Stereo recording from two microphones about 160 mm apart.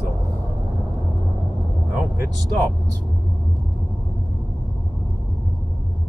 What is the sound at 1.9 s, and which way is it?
Speech, 15° right (ahead or behind).